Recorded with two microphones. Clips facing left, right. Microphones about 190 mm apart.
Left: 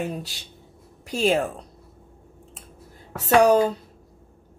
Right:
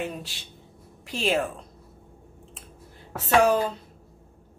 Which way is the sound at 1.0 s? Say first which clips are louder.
Left 4 dB; 40° left (ahead or behind).